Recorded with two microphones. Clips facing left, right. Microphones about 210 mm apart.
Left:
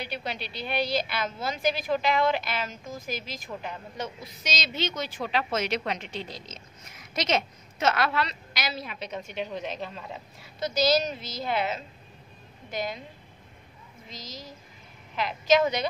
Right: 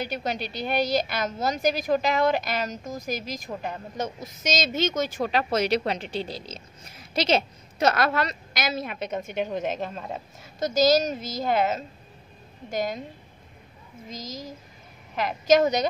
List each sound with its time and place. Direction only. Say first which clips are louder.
0.0 s a woman's voice: right 5 dB; 45° right (ahead or behind)
14.0 s a woman's voice: right 6 dB; 45° right (ahead or behind)